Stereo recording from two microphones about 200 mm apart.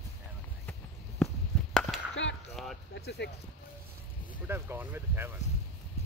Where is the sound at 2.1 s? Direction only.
65° left (ahead or behind).